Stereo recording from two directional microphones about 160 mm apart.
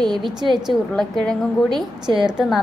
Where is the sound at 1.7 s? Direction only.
25° right (ahead or behind).